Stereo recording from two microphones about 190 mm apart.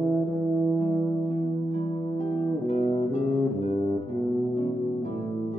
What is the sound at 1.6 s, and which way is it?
Music, 35° left (ahead or behind).